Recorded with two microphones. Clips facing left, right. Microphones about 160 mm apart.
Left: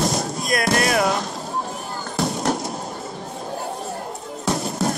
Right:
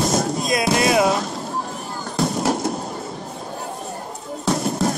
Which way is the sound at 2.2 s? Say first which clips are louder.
Right 2 dB; centre (ahead or behind).